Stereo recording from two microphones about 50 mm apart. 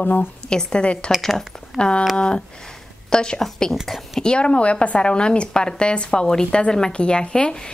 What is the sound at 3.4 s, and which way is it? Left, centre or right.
Speech, centre.